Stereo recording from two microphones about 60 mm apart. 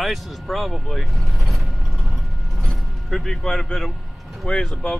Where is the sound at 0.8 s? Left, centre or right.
Centre.